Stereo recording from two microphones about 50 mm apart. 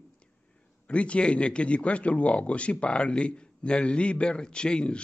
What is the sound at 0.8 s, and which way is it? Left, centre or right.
A man's voice, left.